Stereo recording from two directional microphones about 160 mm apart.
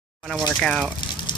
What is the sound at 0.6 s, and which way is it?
Speech, centre (ahead or behind).